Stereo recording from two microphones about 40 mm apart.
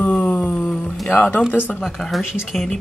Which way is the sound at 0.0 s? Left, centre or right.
Left.